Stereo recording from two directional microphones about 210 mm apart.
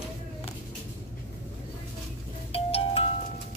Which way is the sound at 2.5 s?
25° left (ahead or behind).